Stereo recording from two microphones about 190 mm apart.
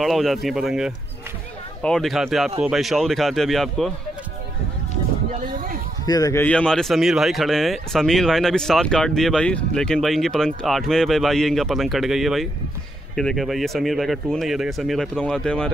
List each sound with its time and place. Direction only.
0.0 s speech: centre (ahead or behind)
5.3 s a sound: 45° right (ahead or behind)
6.0 s speech: 20° left (ahead or behind)
6.4 s speech: 5° left (ahead or behind)